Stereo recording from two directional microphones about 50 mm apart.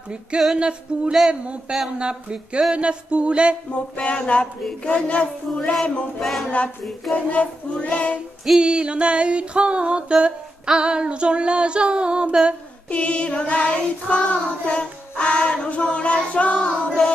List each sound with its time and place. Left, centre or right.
0.6 s music: right
3.7 s child singing: left
5.7 s a sound: centre
6.5 s child singing: left
8.5 s music: centre
12.9 s child singing: left